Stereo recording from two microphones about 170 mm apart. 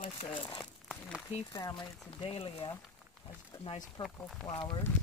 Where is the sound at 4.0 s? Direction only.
30° left (ahead or behind).